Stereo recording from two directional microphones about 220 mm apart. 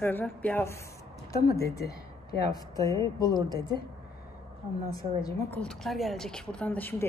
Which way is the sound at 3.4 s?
15° right (ahead or behind).